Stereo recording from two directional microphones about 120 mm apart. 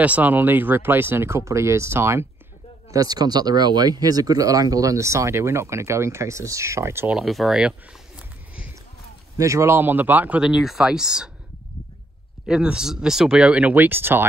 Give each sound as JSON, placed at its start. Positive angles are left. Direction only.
{"t": 0.0, "sound": "speech", "side_deg": -10}
{"t": 2.9, "sound": "speech", "side_deg": -30}
{"t": 7.1, "sound": "speech", "side_deg": -5}
{"t": 9.4, "sound": "speech", "side_deg": -25}
{"t": 12.4, "sound": "speech", "side_deg": -5}